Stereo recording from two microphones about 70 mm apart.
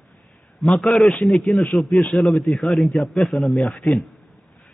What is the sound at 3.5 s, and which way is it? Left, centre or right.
Speech, centre.